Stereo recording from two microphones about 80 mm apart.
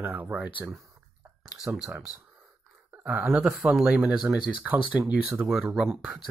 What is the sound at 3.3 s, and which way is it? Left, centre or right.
Speech, centre.